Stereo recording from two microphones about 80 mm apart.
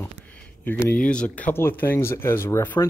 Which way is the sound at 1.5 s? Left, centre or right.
Left.